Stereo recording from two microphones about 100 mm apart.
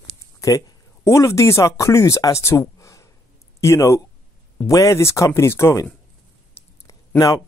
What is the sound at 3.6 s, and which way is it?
Speech, 30° left (ahead or behind).